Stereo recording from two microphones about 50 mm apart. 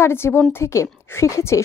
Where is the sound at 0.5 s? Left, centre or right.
Left.